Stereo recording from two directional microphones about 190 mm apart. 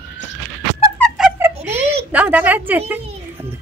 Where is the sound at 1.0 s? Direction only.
5° right (ahead or behind).